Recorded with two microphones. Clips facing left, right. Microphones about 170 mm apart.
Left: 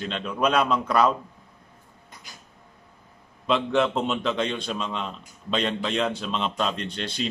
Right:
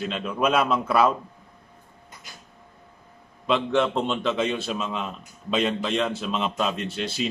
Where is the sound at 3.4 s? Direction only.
Centre (ahead or behind).